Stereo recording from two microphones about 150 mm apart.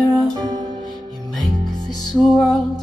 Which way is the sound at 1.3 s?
Centre (ahead or behind).